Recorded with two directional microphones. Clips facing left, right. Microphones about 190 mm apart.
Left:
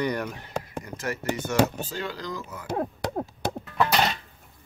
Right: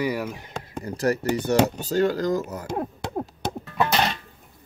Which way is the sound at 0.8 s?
35° right (ahead or behind).